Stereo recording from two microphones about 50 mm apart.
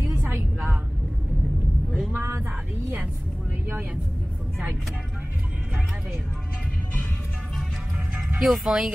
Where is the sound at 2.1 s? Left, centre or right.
Right.